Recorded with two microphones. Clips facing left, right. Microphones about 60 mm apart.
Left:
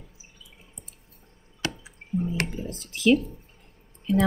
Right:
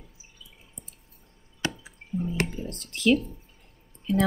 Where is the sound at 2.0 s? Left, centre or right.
Left.